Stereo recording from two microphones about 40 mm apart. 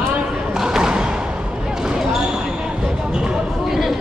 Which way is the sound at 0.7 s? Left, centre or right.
Centre.